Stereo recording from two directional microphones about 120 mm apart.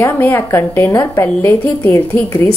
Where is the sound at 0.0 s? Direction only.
15° left (ahead or behind).